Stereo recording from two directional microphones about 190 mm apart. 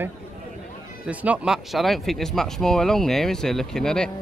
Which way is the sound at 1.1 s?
5° right (ahead or behind).